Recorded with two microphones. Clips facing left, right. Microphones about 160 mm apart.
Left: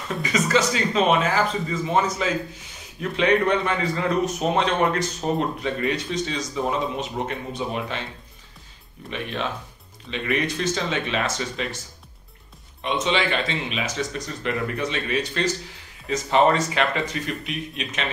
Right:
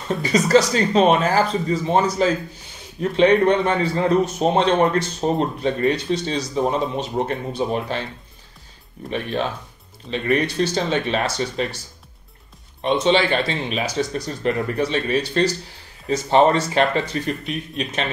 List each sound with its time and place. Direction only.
0.2 s speech: 35° right (ahead or behind)
9.1 s speech: 35° right (ahead or behind)
12.8 s speech: 35° right (ahead or behind)